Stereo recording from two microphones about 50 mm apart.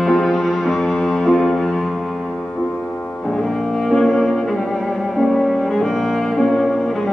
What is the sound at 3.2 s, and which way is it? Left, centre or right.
Cello, centre.